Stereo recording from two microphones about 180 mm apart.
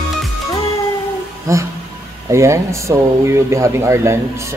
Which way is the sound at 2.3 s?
15° right (ahead or behind).